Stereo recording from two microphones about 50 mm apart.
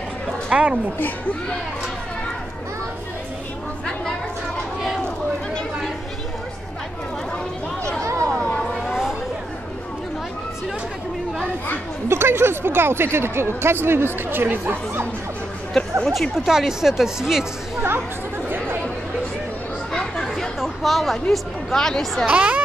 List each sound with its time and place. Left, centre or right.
0.5 s speech: right
0.9 s speech: left
8.0 s a sound: right
8.3 s a sound: left
8.8 s a sound: centre
12.1 s speech: right
16.1 s speech: centre
19.9 s chatter: centre
20.6 s speech: centre
22.2 s speech: right